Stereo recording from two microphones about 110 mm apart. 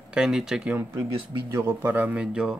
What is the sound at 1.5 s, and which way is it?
Speech, 20° right (ahead or behind).